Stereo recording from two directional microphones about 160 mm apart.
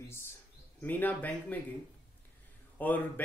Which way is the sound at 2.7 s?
10° left (ahead or behind).